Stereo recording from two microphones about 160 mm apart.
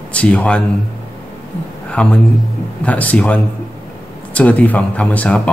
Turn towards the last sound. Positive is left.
turn(degrees=10)  # may be behind; listen again after turning